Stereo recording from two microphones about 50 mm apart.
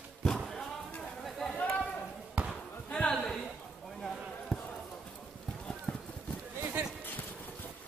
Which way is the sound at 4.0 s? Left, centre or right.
Centre.